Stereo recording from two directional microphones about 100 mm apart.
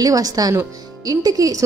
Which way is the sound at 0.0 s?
40° right (ahead or behind).